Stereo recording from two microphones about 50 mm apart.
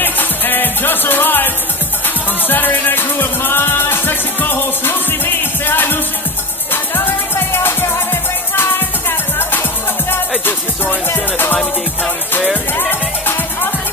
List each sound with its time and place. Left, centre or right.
0.0 s music: left
9.4 s music: left
13.3 s music: left